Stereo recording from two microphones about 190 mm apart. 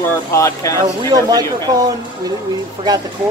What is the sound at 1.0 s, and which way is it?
Speech, 20° right (ahead or behind).